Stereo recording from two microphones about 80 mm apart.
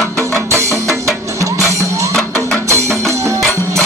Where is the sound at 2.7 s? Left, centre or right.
Right.